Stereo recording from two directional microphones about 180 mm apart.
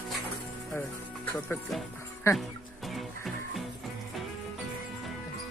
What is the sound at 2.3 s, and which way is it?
Speech, 15° left (ahead or behind).